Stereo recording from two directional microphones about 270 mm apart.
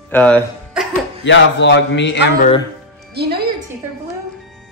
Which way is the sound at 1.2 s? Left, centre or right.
Left.